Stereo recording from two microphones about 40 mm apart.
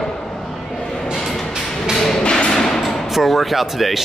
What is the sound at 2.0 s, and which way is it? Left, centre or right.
Thump, centre.